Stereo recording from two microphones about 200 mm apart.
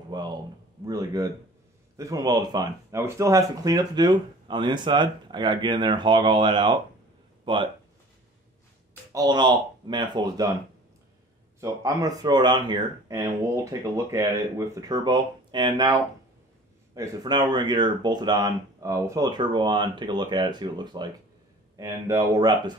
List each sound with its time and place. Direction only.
0.1 s a sound: 20° right (ahead or behind)
0.8 s speech: 15° right (ahead or behind)
9.1 s speech: 20° right (ahead or behind)
11.6 s speech: 15° right (ahead or behind)